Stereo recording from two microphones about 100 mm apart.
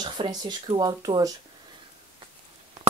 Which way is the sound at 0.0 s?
45° right (ahead or behind).